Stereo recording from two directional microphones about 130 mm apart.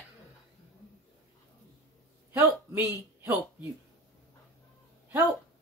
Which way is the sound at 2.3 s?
15° right (ahead or behind).